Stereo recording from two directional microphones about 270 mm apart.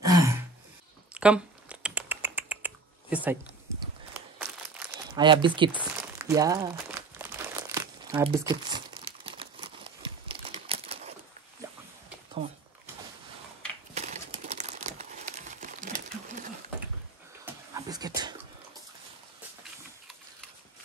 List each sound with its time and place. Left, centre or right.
0.0 s throat clearing: centre
1.1 s a sound: centre
4.4 s crumpling: centre
5.1 s speech: centre
5.7 s crumpling: centre
13.9 s crumpling: right
17.7 s beatboxing: centre